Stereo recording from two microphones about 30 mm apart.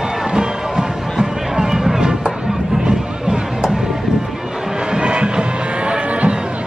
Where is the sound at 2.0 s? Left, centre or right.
Right.